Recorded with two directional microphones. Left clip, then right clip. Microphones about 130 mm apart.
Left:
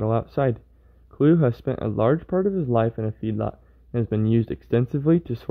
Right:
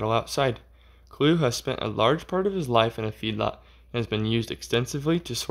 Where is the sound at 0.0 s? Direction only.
35° left (ahead or behind).